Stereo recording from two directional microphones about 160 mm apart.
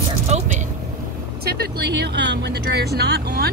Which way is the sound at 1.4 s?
80° right.